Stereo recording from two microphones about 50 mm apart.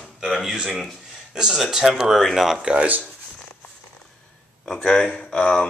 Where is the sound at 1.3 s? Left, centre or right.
Centre.